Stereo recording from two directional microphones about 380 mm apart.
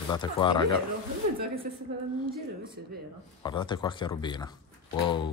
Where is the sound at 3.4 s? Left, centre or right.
Centre.